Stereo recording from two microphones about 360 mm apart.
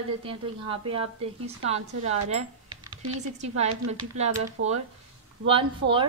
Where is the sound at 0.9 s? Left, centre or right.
Centre.